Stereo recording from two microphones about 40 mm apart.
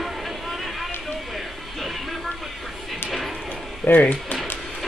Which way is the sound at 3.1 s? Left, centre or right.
Centre.